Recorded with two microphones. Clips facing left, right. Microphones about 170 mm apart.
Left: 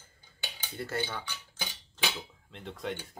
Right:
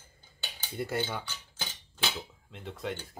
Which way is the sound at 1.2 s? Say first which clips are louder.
Left 1 dB; 15° left (ahead or behind).